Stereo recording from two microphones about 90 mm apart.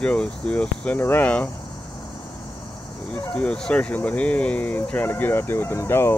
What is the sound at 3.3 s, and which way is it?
Speech, 10° left (ahead or behind).